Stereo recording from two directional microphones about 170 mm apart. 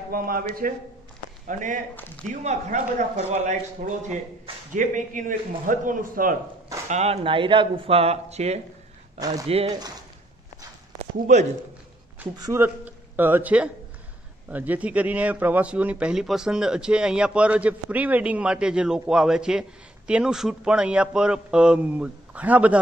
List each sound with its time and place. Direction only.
0.1 s a man's voice: 55° right (ahead or behind)
2.0 s speech: 10° left (ahead or behind)
2.2 s a man's voice: 45° right (ahead or behind)
6.9 s speech: 40° right (ahead or behind)
11.0 s speech: 45° right (ahead or behind)
12.4 s a man's voice: 15° right (ahead or behind)